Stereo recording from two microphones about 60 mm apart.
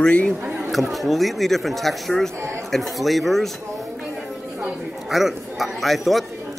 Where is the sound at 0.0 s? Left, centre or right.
Centre.